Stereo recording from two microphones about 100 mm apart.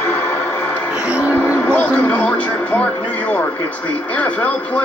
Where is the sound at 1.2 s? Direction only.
25° left (ahead or behind).